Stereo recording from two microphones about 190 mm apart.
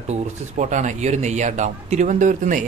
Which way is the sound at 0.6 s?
40° right (ahead or behind).